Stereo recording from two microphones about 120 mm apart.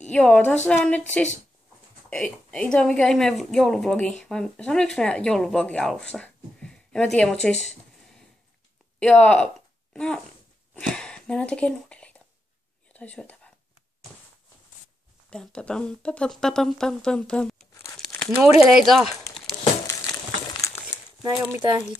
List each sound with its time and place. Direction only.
0.1 s speech: 10° left (ahead or behind)
2.0 s a woman's voice: 5° left (ahead or behind)
10.7 s a sound: 5° left (ahead or behind)
12.9 s speech: 10° left (ahead or behind)
15.2 s speech: 5° left (ahead or behind)
19.9 s a sound: 35° left (ahead or behind)
21.2 s speech: 25° right (ahead or behind)